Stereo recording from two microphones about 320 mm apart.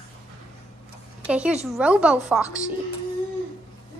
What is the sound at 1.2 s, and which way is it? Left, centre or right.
Speech, centre.